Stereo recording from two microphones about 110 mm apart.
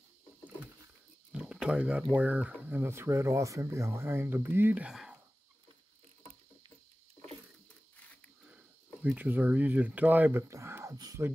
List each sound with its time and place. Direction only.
1.3 s a sound: 5° right (ahead or behind)
2.1 s speech: 10° right (ahead or behind)
2.8 s speech: 20° right (ahead or behind)
4.9 s whispering: 5° right (ahead or behind)
9.0 s speech: 15° right (ahead or behind)